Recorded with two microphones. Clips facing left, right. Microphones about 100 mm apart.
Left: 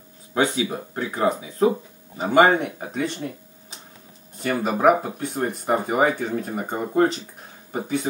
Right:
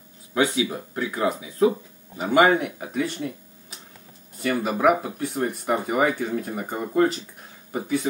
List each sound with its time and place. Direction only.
0.3 s speech: 30° left (ahead or behind)
2.9 s a sound: 30° left (ahead or behind)
4.4 s speech: 25° left (ahead or behind)